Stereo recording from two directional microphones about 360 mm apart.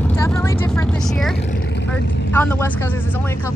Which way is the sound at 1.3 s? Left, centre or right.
Left.